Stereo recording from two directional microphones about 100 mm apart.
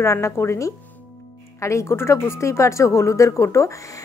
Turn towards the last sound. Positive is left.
turn(degrees=30)  # may be behind; listen again after turning